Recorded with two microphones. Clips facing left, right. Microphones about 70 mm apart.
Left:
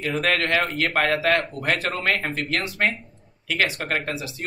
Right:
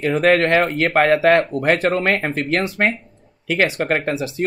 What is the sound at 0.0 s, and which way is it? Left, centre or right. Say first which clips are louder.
Speech: right 8 dB; right.